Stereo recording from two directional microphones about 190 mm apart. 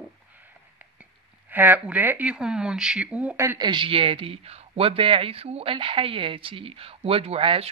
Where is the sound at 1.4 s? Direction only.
10° right (ahead or behind); by 7.7 s 30° right (ahead or behind).